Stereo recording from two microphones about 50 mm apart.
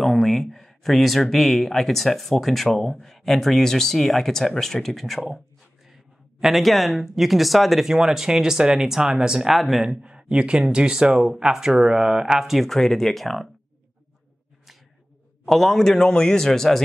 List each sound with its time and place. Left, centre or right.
0.0 s speech: centre
6.4 s speech: centre
9.5 s speech: centre
9.8 s speech: centre
12.6 s speech: centre
15.4 s a man's voice: centre